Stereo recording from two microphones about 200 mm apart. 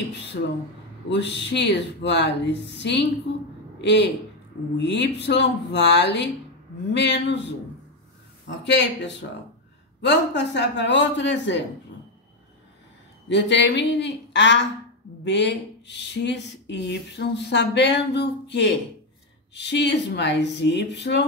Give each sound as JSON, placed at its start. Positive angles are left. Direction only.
{"t": 1.1, "sound": "speech", "side_deg": 60}
{"t": 8.5, "sound": "speech", "side_deg": 65}
{"t": 13.3, "sound": "speech", "side_deg": 60}